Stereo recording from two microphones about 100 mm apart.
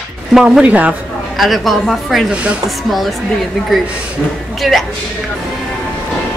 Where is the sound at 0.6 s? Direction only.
15° right (ahead or behind).